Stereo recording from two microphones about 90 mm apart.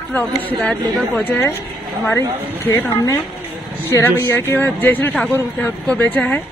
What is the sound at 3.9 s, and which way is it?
Speech, 30° left (ahead or behind).